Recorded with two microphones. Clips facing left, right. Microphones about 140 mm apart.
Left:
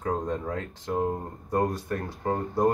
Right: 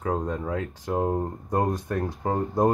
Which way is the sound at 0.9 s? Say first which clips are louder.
Right 2 dB; 25° right (ahead or behind).